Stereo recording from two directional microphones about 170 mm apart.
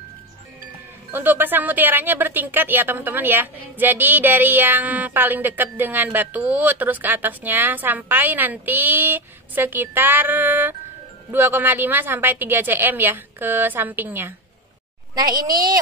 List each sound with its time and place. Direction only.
1.1 s a woman's voice: 10° right (ahead or behind)
15.1 s a child's voice: 20° right (ahead or behind)